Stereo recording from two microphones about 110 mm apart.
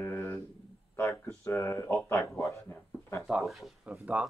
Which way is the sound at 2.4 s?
25° left (ahead or behind).